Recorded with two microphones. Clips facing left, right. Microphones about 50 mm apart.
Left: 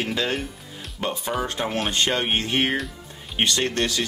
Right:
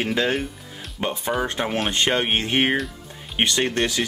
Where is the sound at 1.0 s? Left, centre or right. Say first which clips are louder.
Right 1 dB; right.